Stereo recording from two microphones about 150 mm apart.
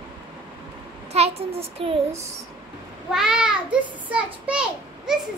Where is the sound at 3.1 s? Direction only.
5° right (ahead or behind).